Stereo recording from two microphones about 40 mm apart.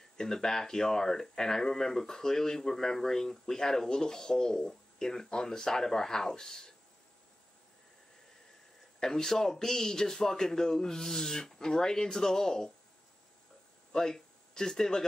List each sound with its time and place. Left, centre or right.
0.2 s speech: centre
9.0 s speech: centre
13.9 s speech: centre